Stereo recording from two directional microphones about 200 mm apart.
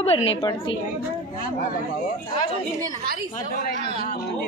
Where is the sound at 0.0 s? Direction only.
30° left (ahead or behind).